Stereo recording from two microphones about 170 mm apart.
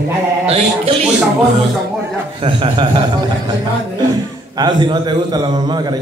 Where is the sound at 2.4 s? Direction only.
30° right (ahead or behind).